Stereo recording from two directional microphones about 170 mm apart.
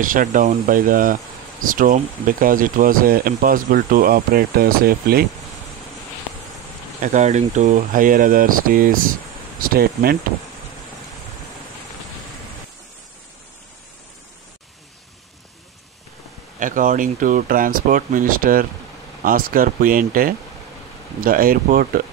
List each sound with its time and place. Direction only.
0.0 s speech: 55° right (ahead or behind)
7.0 s speech: 45° right (ahead or behind)
16.5 s speech: 50° right (ahead or behind)